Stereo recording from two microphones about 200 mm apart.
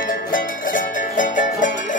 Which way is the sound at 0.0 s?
45° left (ahead or behind).